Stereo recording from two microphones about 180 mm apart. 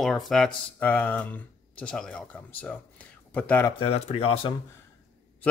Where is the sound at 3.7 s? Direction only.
30° left (ahead or behind).